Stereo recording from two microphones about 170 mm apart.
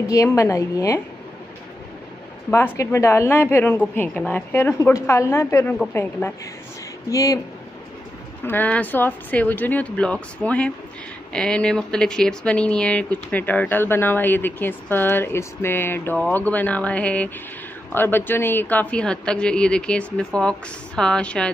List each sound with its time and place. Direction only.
0.1 s a woman's voice: 20° left (ahead or behind)
2.5 s a woman's voice: 15° left (ahead or behind)
8.5 s speech: 10° left (ahead or behind)